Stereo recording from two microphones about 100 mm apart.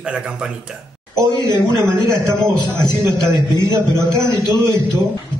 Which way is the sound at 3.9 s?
45° left (ahead or behind).